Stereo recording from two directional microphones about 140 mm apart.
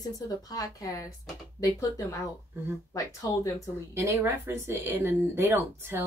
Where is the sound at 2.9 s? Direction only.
20° left (ahead or behind).